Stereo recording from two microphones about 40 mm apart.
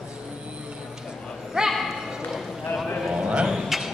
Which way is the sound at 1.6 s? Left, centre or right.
Centre.